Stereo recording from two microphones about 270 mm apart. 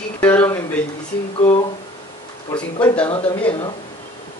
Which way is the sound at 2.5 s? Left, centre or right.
Centre.